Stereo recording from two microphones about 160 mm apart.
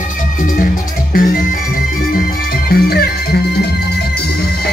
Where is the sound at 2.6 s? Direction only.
80° left.